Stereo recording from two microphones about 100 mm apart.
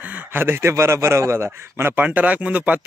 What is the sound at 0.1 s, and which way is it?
A man's voice, 20° right (ahead or behind).